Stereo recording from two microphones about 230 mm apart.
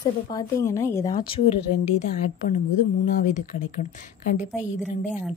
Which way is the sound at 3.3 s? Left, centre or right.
Left.